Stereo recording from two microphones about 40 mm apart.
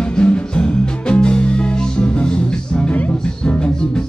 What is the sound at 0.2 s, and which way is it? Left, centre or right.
Music, left.